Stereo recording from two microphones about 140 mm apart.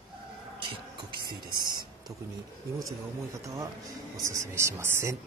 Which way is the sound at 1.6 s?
30° right (ahead or behind).